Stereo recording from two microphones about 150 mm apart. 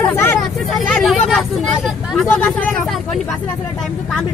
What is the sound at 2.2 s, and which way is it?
Speech, 10° left (ahead or behind).